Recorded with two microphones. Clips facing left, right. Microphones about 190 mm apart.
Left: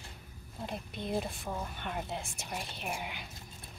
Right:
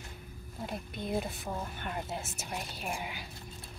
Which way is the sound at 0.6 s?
Centre (ahead or behind).